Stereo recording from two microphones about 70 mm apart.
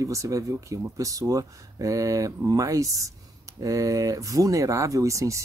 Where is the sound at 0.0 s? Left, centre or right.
Right.